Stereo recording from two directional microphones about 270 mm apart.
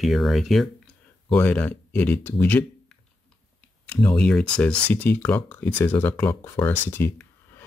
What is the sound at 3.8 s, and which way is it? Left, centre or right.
Speech, centre.